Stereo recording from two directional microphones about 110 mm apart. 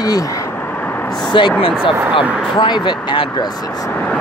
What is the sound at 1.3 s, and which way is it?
Speech, 45° left (ahead or behind).